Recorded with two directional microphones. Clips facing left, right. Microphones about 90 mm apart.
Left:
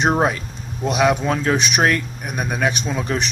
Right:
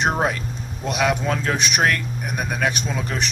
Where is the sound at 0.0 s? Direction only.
15° left (ahead or behind).